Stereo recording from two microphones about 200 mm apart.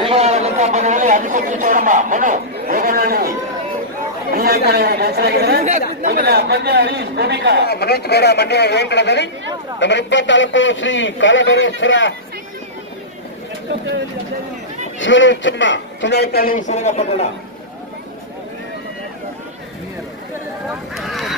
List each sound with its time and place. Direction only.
0.0 s a man's voice: 30° right (ahead or behind); by 3.3 s 50° right (ahead or behind)
4.3 s speech: 50° right (ahead or behind)
7.6 s a man's voice: 50° left (ahead or behind)
15.0 s a man's voice: 65° left (ahead or behind); by 17.3 s 35° left (ahead or behind)
20.9 s a sound: centre (ahead or behind)